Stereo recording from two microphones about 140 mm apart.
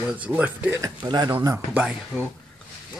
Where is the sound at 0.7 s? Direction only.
25° right (ahead or behind).